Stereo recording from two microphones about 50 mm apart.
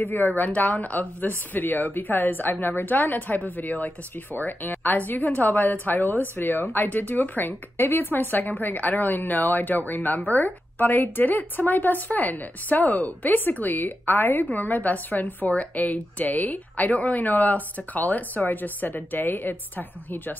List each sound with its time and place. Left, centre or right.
0.0 s speech: left